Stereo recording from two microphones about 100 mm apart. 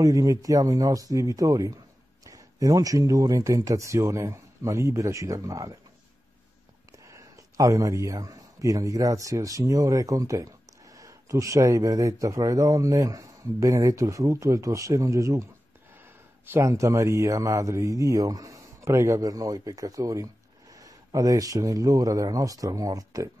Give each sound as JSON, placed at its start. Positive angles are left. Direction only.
{"t": 0.0, "sound": "speech", "side_deg": -35}
{"t": 6.9, "sound": "a man's voice", "side_deg": -30}